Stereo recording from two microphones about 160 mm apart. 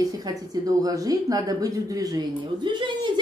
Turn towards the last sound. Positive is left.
turn(degrees=-30)  # may be behind; listen again after turning